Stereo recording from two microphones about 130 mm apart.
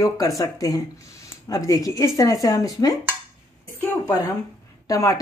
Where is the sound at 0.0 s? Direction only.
25° left (ahead or behind).